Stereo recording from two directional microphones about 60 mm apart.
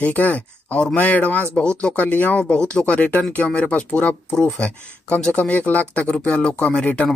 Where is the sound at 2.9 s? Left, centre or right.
Left.